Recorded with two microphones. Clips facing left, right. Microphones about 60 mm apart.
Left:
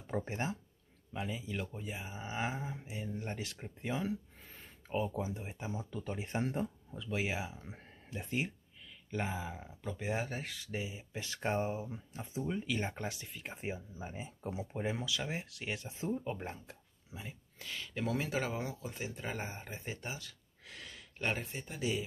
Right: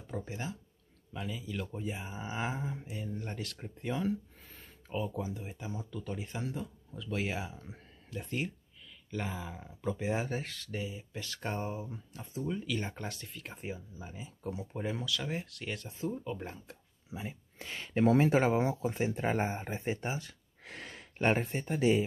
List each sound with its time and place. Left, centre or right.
0.0 s speech: left
1.1 s speech: centre
1.7 s speech: centre; by 6.3 s left
6.3 s speech: left
6.9 s speech: centre
7.7 s speech: left
9.8 s speech: centre
10.5 s speech: centre
13.0 s speech: centre
17.1 s speech: centre
17.6 s speech: right